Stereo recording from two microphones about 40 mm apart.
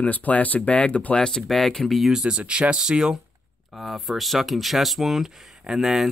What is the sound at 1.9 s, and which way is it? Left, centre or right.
Speech, centre.